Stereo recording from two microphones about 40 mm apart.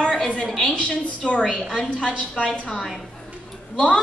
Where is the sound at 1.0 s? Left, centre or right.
Left.